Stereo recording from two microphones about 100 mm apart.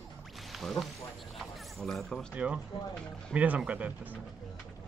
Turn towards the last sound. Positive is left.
turn(degrees=-15)  # may be behind; listen again after turning